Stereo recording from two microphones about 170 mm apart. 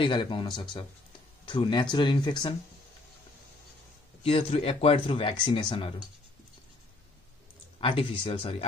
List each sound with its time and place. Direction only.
0.0 s speech: 30° left (ahead or behind)
4.2 s speech: 35° left (ahead or behind)
7.8 s speech: 30° left (ahead or behind)